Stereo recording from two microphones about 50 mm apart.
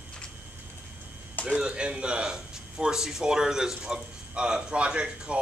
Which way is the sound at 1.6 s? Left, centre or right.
Centre.